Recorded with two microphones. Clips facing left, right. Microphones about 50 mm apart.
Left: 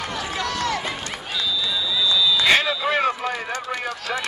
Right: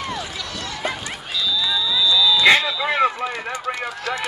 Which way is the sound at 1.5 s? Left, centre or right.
Left.